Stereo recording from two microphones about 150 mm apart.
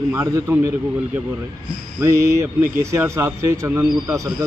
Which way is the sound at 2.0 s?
20° right (ahead or behind).